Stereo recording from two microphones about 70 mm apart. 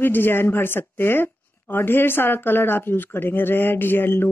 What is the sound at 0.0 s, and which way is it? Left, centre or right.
A woman's voice, left.